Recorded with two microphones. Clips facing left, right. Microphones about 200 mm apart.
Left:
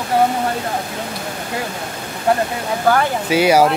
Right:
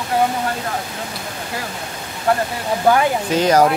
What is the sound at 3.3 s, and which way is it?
Speech, 10° left (ahead or behind).